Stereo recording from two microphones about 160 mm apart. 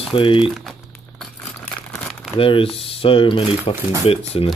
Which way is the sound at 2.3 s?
35° left (ahead or behind).